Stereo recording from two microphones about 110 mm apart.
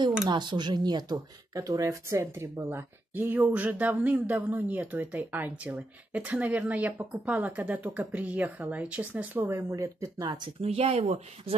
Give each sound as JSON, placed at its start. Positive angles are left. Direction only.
{"t": 0.3, "sound": "speech", "side_deg": -45}
{"t": 10.6, "sound": "speech", "side_deg": -65}